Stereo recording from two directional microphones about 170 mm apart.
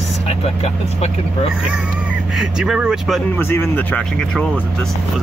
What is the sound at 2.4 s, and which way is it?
Speech, 5° right (ahead or behind).